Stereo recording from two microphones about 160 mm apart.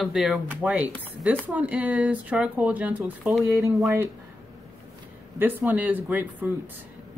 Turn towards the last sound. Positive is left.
turn(degrees=-10)  # may be behind; listen again after turning